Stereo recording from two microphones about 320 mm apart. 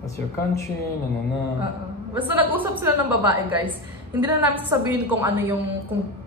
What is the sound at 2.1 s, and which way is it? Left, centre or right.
A woman's voice, centre.